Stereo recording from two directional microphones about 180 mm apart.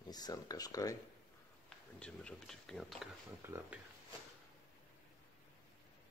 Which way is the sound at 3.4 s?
10° right (ahead or behind).